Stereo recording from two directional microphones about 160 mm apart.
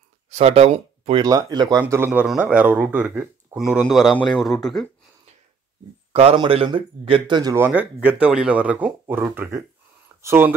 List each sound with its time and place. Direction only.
0.3 s speech: 40° right (ahead or behind)
1.2 s speech: 25° right (ahead or behind)
1.8 s speech: 10° right (ahead or behind)
6.1 s a man's voice: 35° right (ahead or behind)
7.5 s speech: 10° right (ahead or behind)